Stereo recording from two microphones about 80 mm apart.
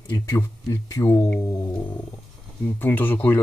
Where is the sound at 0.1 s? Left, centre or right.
Left.